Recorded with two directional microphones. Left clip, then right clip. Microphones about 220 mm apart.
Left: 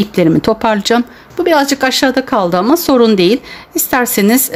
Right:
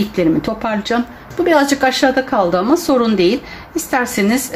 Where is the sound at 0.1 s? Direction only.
50° left (ahead or behind).